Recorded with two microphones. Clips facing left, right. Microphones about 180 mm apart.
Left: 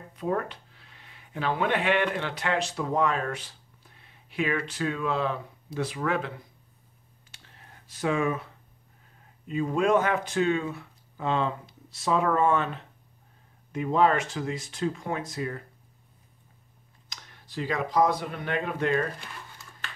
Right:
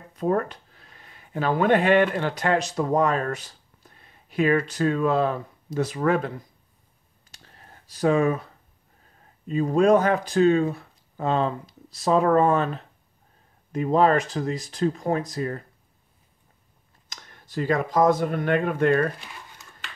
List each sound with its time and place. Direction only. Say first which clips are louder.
0.1 s speech: right 5 dB; 45° right (ahead or behind)
7.2 s a sound: right 3 dB; 40° right (ahead or behind)
9.5 s speech: right 5 dB; 35° right (ahead or behind)
17.1 s speech: right 5 dB; 45° right (ahead or behind)